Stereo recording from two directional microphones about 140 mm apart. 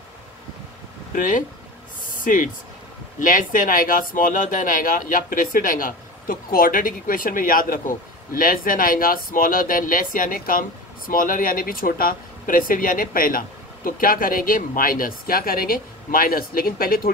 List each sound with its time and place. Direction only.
1.1 s speech: 70° left (ahead or behind); by 17.1 s 90° left